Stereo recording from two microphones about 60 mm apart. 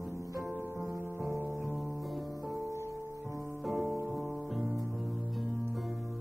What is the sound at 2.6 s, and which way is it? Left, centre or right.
Music, right.